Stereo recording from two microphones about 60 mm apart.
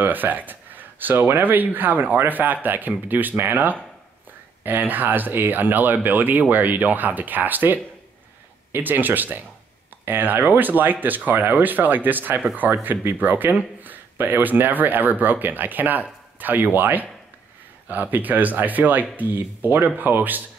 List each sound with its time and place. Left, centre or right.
0.0 s speech: right